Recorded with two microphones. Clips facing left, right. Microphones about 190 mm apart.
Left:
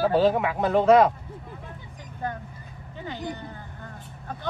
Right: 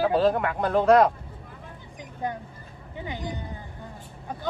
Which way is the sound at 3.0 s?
15° right (ahead or behind).